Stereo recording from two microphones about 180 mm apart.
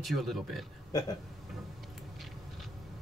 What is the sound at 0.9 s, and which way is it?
Speech, 20° left (ahead or behind).